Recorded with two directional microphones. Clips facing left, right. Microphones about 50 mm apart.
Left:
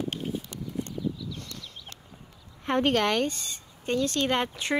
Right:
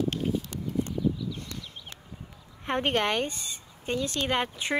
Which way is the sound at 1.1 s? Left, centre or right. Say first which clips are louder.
Right 3 dB; centre.